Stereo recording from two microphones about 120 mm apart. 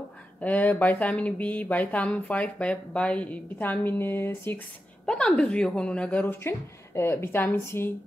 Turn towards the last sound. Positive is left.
turn(degrees=20)  # may be behind; listen again after turning